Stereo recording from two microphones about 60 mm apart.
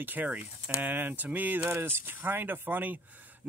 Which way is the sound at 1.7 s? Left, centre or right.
Right.